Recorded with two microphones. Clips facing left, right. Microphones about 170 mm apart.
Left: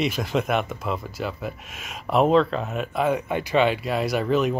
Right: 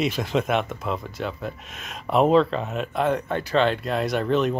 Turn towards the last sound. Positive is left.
turn(degrees=5)  # may be behind; listen again after turning